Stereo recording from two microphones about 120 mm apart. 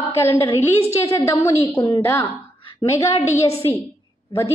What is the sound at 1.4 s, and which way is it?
Speech, 25° left (ahead or behind).